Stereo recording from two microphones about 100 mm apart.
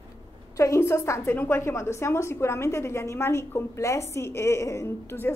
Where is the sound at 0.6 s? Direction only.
30° left (ahead or behind).